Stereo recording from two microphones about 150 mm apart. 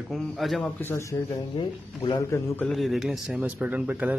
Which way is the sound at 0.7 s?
15° left (ahead or behind).